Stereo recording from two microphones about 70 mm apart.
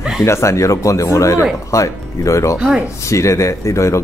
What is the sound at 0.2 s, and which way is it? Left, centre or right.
A man's voice, left.